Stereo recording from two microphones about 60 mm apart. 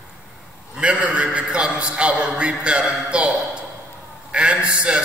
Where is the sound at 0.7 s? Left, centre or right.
Right.